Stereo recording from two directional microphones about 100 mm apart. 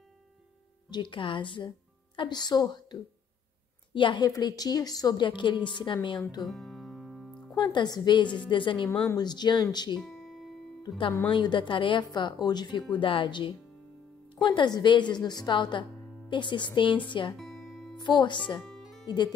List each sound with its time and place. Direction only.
0.8 s speech: 50° left (ahead or behind)
4.3 s speech: 40° left (ahead or behind)
6.4 s music: centre (ahead or behind)
7.5 s speech: 45° left (ahead or behind)
9.9 s music: centre (ahead or behind)
11.2 s speech: 55° left (ahead or behind)
12.9 s speech: 60° left (ahead or behind)
17.4 s music: centre (ahead or behind)
17.9 s speech: 50° left (ahead or behind)
18.6 s music: centre (ahead or behind)
19.0 s speech: 50° left (ahead or behind)